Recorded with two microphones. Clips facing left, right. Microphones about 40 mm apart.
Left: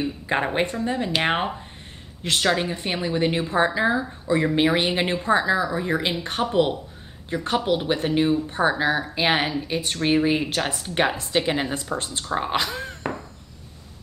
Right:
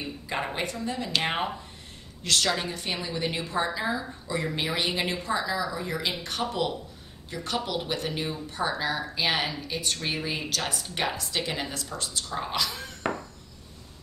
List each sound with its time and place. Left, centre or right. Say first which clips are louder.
0.0 s a woman's voice: left 7 dB; left